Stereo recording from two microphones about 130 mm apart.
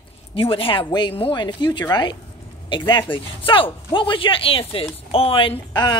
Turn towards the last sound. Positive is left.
turn(degrees=40)  # may be behind; listen again after turning